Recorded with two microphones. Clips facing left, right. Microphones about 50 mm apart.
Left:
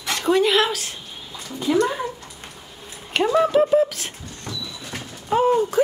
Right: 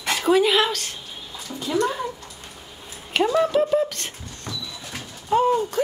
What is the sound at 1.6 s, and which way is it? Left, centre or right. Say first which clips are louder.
Speech: left 3 dB; centre.